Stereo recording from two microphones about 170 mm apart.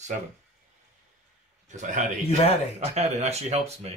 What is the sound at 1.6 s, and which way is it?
A man's voice, 45° right (ahead or behind).